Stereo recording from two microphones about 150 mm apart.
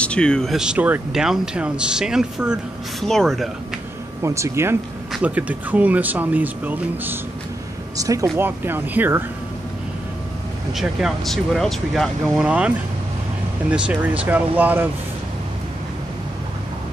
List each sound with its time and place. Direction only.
0.0 s speech: 5° left (ahead or behind)
4.2 s speech: 20° right (ahead or behind)
8.0 s speech: 20° right (ahead or behind)
10.7 s speech: centre (ahead or behind)